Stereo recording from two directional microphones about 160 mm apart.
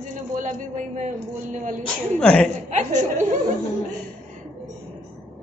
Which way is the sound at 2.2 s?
5° left (ahead or behind).